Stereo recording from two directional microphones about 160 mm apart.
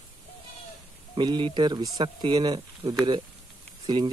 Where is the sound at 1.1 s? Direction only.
30° right (ahead or behind).